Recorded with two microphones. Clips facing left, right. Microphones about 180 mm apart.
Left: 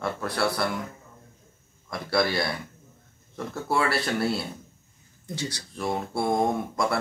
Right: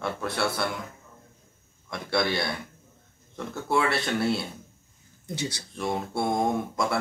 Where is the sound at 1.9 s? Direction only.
Centre (ahead or behind).